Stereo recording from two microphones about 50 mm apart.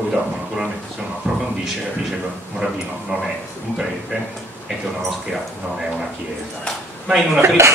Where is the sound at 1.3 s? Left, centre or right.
Centre.